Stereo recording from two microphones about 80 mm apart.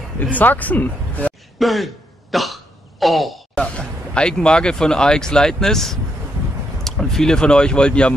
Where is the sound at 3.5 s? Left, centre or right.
Centre.